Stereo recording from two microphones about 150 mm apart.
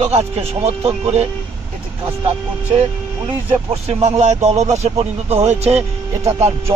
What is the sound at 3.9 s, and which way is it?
Speech, 45° right (ahead or behind).